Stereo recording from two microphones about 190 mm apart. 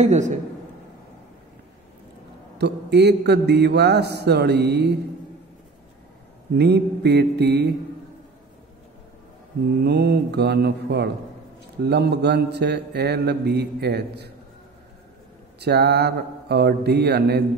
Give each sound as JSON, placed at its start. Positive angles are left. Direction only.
{"t": 0.0, "sound": "a woman's voice", "side_deg": -40}
{"t": 2.6, "sound": "speech", "side_deg": -60}
{"t": 6.5, "sound": "speech", "side_deg": -60}
{"t": 9.8, "sound": "speech", "side_deg": -60}
{"t": 15.6, "sound": "speech", "side_deg": -60}